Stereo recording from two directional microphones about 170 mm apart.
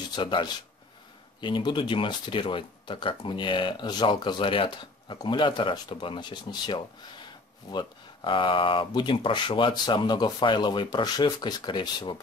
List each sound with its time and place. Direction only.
0.1 s speech: 25° left (ahead or behind)